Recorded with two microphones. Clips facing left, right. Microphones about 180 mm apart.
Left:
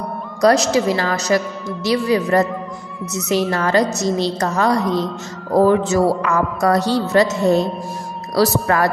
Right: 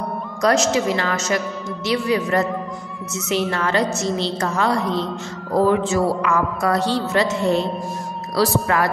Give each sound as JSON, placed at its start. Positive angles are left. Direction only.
{"t": 0.4, "sound": "a woman's voice", "side_deg": 35}